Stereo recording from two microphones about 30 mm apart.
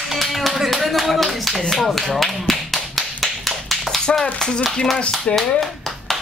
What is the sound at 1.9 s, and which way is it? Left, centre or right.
Tap, centre.